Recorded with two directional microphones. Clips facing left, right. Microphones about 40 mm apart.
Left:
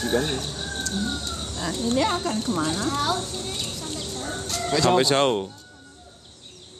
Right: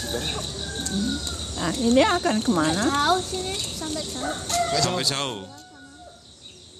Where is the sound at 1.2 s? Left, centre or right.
Right.